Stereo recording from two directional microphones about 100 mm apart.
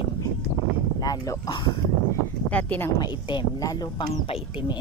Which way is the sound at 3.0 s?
50° left (ahead or behind).